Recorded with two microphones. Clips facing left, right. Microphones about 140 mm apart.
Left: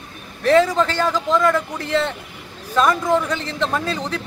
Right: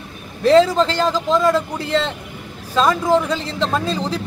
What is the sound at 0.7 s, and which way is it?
Speech, 20° right (ahead or behind).